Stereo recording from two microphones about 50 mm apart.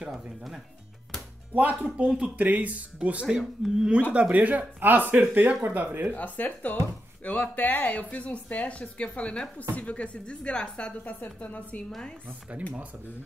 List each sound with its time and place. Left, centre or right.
1.5 s speech: right
2.0 s speech: centre
2.3 s speech: right
3.3 s speech: centre
4.1 s speech: right
6.1 s a woman's voice: left; by 10.9 s centre
11.1 s a woman's voice: left